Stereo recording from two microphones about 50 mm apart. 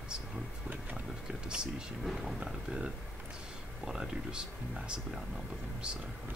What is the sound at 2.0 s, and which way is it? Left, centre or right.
Speech, centre.